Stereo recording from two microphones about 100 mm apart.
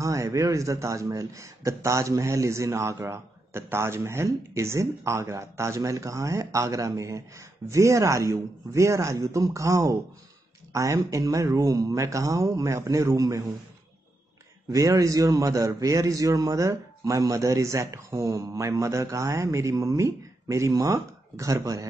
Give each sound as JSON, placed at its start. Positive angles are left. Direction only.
{"t": 0.0, "sound": "a man's voice", "side_deg": -35}
{"t": 14.7, "sound": "a man's voice", "side_deg": -30}